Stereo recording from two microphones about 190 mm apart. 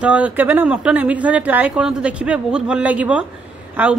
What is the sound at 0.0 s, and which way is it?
A woman's voice, 10° right (ahead or behind).